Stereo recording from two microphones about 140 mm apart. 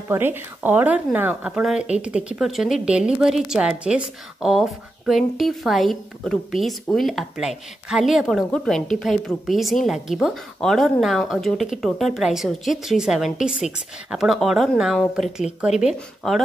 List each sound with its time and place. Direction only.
0.1 s speech: 15° right (ahead or behind)